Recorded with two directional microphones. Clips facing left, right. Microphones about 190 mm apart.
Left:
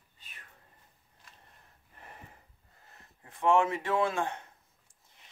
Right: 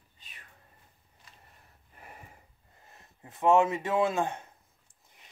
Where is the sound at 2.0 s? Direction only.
10° right (ahead or behind).